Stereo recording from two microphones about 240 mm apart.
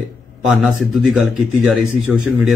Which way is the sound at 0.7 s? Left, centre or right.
Centre.